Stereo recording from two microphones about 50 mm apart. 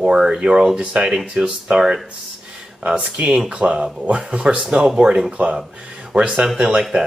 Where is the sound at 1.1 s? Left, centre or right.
Centre.